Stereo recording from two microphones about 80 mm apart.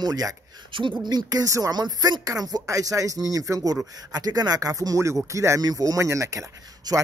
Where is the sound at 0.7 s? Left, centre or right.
Right.